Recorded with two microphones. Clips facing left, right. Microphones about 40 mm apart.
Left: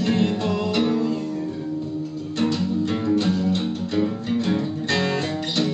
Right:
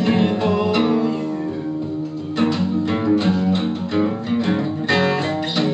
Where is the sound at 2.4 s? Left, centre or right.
Right.